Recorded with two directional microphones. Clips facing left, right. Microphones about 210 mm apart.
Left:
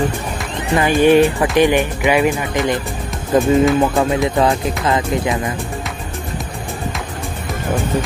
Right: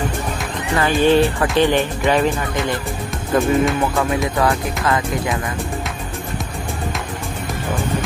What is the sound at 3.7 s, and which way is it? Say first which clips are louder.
Music: left 4 dB; 25° left (ahead or behind).